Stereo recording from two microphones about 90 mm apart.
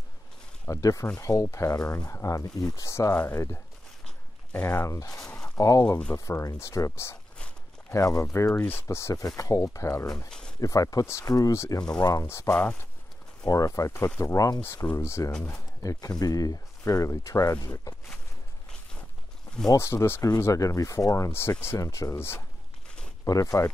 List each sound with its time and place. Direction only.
0.7 s speech: 35° left (ahead or behind)
4.6 s speech: 35° left (ahead or behind)
8.5 s speech: 25° left (ahead or behind)
8.8 s speech: 35° left (ahead or behind)
10.0 s speech: 10° left (ahead or behind)
10.6 s speech: 40° left (ahead or behind)
12.3 s speech: 30° left (ahead or behind)
19.8 s speech: 30° left (ahead or behind)
21.7 s speech: 40° left (ahead or behind)
22.1 s speech: 25° left (ahead or behind)
23.2 s speech: 40° left (ahead or behind)